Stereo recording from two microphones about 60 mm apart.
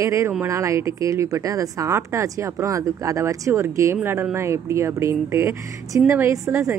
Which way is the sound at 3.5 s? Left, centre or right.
Right.